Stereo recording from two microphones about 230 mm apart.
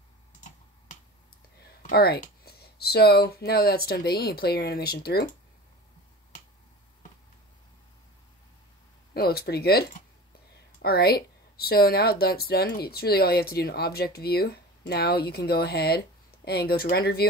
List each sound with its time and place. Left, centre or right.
1.8 s speech: left
9.1 s speech: left